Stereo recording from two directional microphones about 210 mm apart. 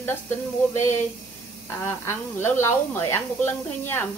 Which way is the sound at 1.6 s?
10° left (ahead or behind).